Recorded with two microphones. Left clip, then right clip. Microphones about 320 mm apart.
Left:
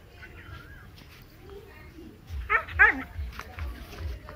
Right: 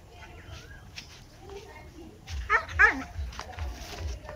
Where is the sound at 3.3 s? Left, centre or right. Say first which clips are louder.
Right 1 dB; right.